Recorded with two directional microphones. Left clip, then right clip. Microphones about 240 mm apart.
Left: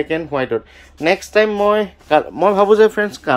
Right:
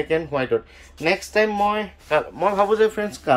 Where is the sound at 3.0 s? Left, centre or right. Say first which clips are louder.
Left 5 dB; centre.